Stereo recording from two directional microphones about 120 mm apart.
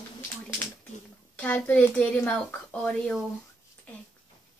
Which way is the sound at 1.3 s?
15° left (ahead or behind).